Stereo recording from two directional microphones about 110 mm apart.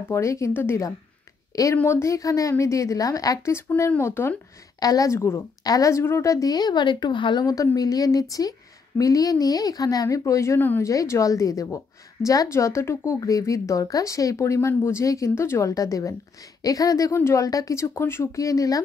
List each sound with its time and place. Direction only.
0.1 s a woman's voice: 25° left (ahead or behind)
4.7 s speech: 35° left (ahead or behind)
7.4 s a woman's voice: 30° left (ahead or behind)